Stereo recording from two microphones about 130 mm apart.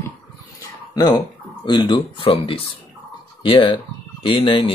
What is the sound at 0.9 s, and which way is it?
Speech, 30° left (ahead or behind).